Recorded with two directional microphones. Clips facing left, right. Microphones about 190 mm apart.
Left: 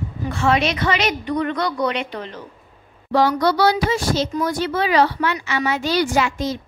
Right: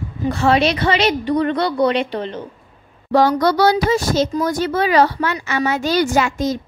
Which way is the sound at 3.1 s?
45° right (ahead or behind).